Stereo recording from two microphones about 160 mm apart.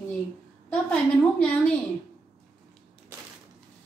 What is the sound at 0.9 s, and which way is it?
Speech, 5° left (ahead or behind).